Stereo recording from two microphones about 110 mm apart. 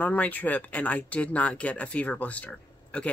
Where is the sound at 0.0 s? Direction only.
15° left (ahead or behind).